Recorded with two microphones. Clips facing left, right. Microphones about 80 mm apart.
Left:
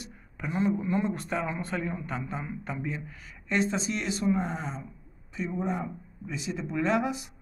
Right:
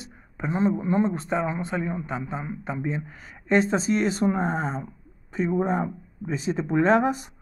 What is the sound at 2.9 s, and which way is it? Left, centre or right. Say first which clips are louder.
Speech: right 6 dB; right.